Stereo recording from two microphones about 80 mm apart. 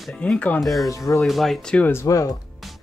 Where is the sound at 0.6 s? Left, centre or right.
Centre.